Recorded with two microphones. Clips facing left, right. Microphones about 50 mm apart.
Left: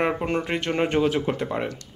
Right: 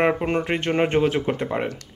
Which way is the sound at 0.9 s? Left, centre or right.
Right.